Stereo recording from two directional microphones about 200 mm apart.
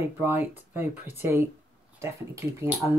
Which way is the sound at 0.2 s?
10° right (ahead or behind).